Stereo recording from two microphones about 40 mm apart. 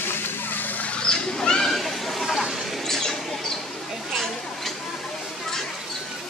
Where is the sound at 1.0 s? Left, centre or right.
Centre.